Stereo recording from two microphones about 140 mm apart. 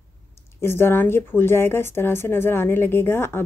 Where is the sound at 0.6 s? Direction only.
15° left (ahead or behind).